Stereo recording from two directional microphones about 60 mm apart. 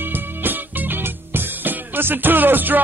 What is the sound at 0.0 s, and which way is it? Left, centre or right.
Music, right.